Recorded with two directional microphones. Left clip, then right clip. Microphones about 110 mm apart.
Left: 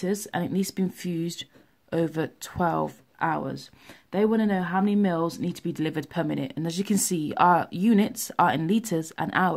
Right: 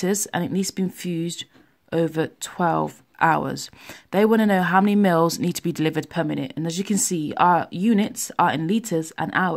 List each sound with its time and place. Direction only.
0.0 s speech: 50° right (ahead or behind)
0.3 s speech: 30° right (ahead or behind)
3.2 s speech: 50° right (ahead or behind)
4.1 s speech: 65° right (ahead or behind)
5.8 s speech: 35° right (ahead or behind); by 9.5 s 15° right (ahead or behind)